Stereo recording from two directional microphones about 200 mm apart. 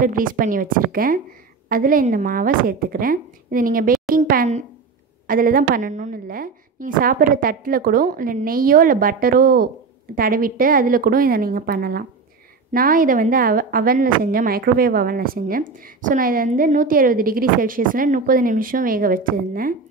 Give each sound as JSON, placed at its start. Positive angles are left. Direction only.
{"t": 0.0, "sound": "a woman's voice", "side_deg": -45}